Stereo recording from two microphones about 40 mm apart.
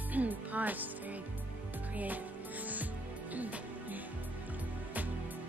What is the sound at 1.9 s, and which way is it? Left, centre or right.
Music, right.